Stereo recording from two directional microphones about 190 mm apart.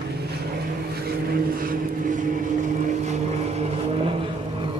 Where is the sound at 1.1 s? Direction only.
50° right (ahead or behind); by 4.3 s 30° right (ahead or behind).